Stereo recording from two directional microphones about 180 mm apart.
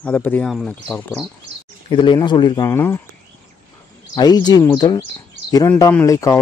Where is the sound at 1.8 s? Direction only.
25° left (ahead or behind).